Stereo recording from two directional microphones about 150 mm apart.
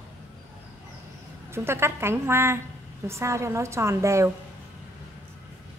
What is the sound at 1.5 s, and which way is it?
A woman's voice, 15° right (ahead or behind).